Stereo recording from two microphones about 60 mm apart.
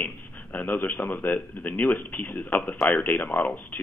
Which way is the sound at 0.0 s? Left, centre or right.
Left.